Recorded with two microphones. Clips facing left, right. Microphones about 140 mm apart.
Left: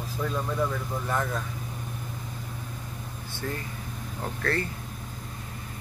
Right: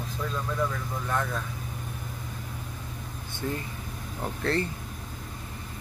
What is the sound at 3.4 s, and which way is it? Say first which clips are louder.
Speech: right 2 dB; 20° right (ahead or behind).